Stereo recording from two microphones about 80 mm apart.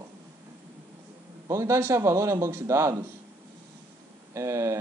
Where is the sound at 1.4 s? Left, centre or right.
Right.